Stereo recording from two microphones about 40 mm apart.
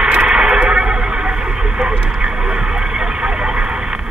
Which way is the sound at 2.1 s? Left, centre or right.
Centre.